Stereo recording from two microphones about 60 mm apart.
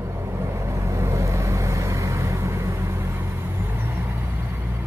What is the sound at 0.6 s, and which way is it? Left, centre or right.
Vehicle, right.